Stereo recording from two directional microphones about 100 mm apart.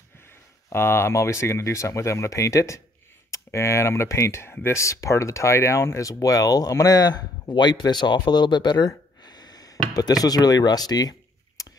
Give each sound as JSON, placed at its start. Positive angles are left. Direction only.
{"t": 0.7, "sound": "speech", "side_deg": 25}